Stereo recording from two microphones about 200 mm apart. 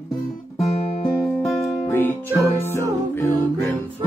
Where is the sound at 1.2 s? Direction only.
Centre (ahead or behind).